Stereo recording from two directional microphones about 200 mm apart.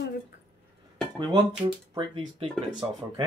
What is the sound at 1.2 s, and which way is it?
Speech, 25° right (ahead or behind).